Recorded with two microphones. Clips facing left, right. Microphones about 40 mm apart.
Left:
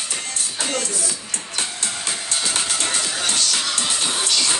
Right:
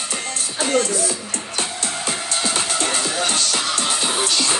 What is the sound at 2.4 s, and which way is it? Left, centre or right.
Music, right.